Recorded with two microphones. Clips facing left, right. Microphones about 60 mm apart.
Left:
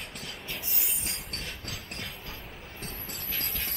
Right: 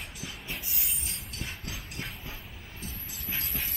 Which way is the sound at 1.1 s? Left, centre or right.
Left.